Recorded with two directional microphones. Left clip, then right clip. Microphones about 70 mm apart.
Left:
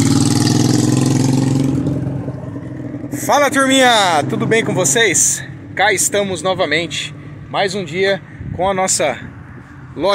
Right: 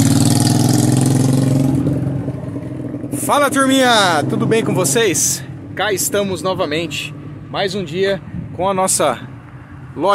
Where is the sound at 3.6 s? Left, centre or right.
Right.